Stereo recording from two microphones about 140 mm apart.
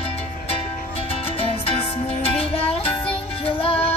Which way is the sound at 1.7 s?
45° left (ahead or behind).